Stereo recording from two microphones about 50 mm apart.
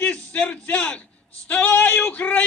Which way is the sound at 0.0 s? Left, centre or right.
Left.